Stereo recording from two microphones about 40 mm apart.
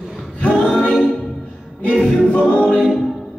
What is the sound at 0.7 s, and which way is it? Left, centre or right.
A capella, centre.